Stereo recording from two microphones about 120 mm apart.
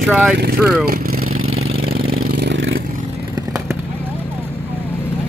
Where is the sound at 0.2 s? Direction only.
15° right (ahead or behind).